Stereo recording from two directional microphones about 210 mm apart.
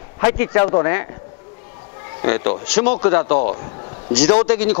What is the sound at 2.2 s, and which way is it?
A man's voice, 15° left (ahead or behind).